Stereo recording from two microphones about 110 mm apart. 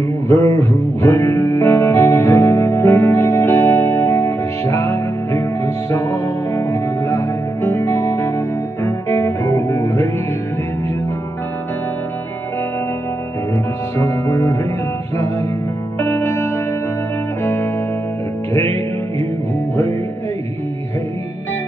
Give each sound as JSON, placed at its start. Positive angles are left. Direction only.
{"t": 0.3, "sound": "music", "side_deg": 25}
{"t": 13.9, "sound": "music", "side_deg": 25}
{"t": 16.0, "sound": "music", "side_deg": 25}